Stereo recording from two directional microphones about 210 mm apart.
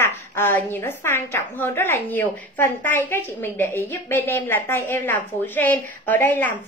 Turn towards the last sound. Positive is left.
turn(degrees=10)  # may be behind; listen again after turning